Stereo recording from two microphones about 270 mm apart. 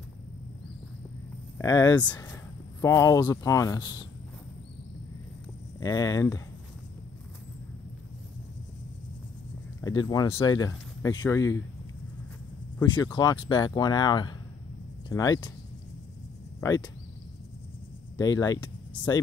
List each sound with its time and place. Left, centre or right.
1.6 s speech: centre
5.8 s speech: centre
9.8 s speech: centre
12.7 s speech: centre
16.6 s speech: centre
18.1 s speech: centre